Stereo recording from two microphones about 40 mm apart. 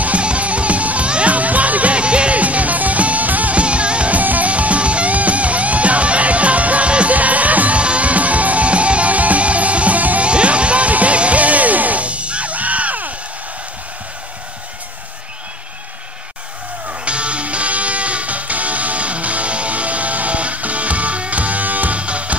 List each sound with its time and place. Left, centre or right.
0.0 s music: right
4.2 s music: right
4.5 s music: right
16.8 s music: right
22.0 s music: right